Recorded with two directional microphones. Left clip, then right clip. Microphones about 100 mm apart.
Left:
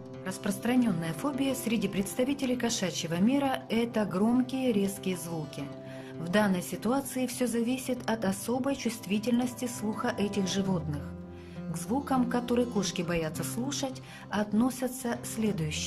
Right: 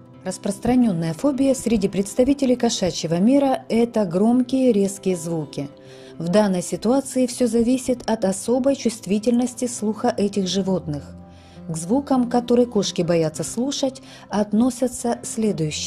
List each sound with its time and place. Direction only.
0.2 s a woman's voice: 55° right (ahead or behind)